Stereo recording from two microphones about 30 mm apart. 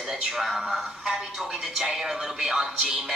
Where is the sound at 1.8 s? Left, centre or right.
Centre.